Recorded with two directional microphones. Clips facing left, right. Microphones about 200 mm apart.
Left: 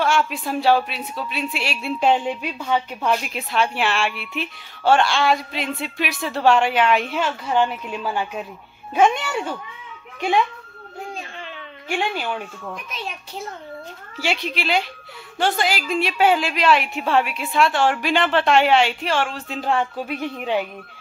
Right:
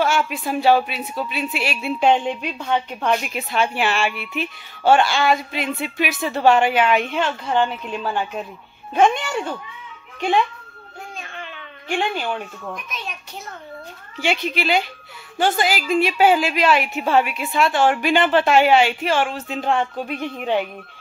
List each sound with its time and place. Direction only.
0.0 s a woman's voice: 5° right (ahead or behind)
11.9 s a woman's voice: 5° left (ahead or behind)
12.9 s a child's voice: 30° left (ahead or behind)
14.1 s a woman's voice: centre (ahead or behind)